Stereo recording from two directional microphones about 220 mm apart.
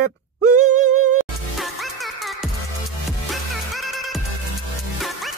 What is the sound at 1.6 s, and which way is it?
Music, centre (ahead or behind).